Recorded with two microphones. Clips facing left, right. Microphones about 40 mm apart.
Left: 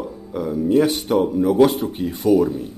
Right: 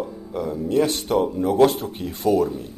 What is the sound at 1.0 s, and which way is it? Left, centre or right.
Speech, left.